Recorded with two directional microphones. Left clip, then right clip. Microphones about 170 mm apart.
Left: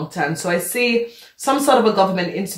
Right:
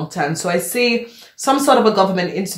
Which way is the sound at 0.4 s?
35° right (ahead or behind).